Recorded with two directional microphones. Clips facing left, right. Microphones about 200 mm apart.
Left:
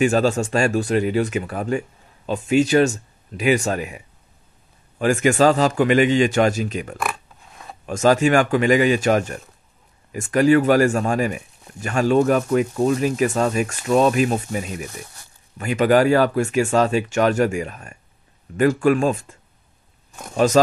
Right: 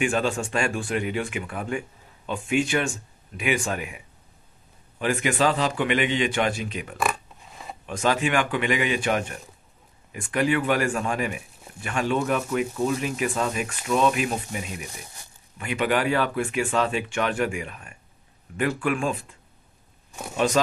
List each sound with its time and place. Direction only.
0.0 s speech: 40° left (ahead or behind)
7.0 s a sound: centre (ahead or behind)
7.8 s speech: 40° left (ahead or behind)